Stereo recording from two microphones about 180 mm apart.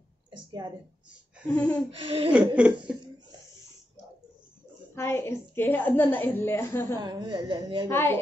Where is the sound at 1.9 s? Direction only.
30° right (ahead or behind).